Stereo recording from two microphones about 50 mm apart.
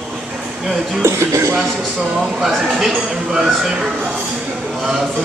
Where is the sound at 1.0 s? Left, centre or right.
Right.